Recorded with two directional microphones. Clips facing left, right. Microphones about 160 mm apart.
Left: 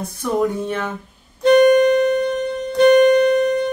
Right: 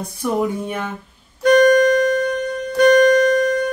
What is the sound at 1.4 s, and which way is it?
Music, 25° left (ahead or behind).